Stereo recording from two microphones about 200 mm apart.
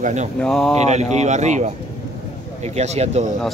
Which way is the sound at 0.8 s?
35° right (ahead or behind).